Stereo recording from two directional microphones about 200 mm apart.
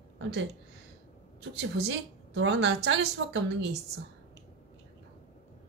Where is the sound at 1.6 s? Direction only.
60° right (ahead or behind).